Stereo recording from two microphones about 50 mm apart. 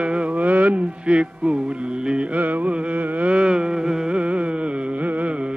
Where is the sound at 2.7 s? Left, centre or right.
Right.